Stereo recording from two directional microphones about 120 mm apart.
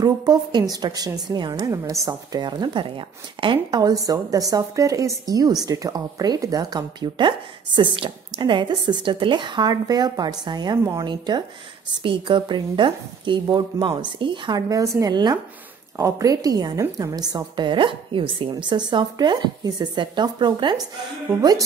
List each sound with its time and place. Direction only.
0.0 s a woman's voice: 35° right (ahead or behind)
14.7 s a woman's voice: 30° right (ahead or behind)